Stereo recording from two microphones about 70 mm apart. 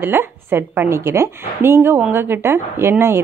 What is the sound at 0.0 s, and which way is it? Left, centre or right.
A woman's voice, right.